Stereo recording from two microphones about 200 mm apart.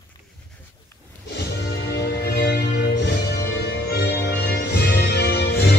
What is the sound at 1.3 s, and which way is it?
Music, 60° left (ahead or behind).